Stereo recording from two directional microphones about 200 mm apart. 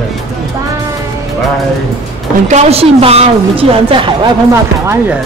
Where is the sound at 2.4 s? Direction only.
35° right (ahead or behind).